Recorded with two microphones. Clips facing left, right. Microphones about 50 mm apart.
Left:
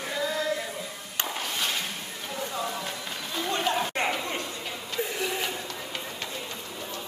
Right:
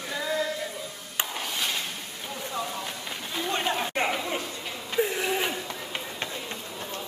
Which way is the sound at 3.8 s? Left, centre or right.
Centre.